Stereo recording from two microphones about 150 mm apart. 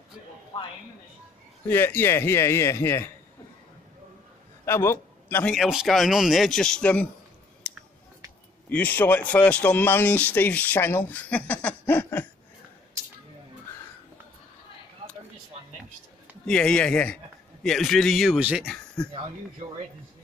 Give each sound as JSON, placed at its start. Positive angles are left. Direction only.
{"t": 0.5, "sound": "speech", "side_deg": 40}
{"t": 1.7, "sound": "speech", "side_deg": 15}
{"t": 4.6, "sound": "a man's voice", "side_deg": 15}
{"t": 5.4, "sound": "a man's voice", "side_deg": 0}
{"t": 7.7, "sound": "a sound", "side_deg": 5}
{"t": 8.6, "sound": "speech", "side_deg": 10}
{"t": 16.4, "sound": "a man's voice", "side_deg": 5}